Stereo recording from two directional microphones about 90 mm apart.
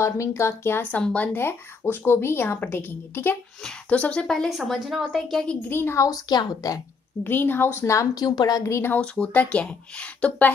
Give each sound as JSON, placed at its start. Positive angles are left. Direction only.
{"t": 0.0, "sound": "speech", "side_deg": 30}
{"t": 0.9, "sound": "a woman's voice", "side_deg": 15}
{"t": 3.6, "sound": "speech", "side_deg": 10}
{"t": 5.7, "sound": "speech", "side_deg": 30}
{"t": 7.2, "sound": "speech", "side_deg": 25}
{"t": 8.9, "sound": "speech", "side_deg": 10}